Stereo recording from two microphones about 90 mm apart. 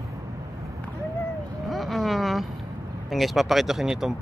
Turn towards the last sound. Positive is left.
turn(degrees=-5)  # may be behind; listen again after turning